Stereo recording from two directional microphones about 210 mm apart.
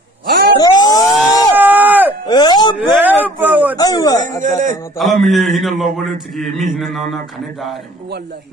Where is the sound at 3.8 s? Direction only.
20° left (ahead or behind).